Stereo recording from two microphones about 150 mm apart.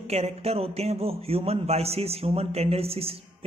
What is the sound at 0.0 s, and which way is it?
A man's voice, 45° right (ahead or behind).